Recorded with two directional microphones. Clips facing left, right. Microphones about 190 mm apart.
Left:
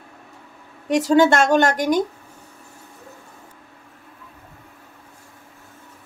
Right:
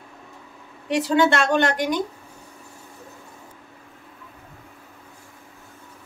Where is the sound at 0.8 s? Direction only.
45° left (ahead or behind).